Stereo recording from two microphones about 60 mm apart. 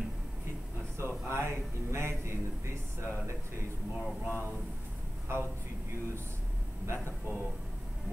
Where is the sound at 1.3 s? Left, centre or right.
Right.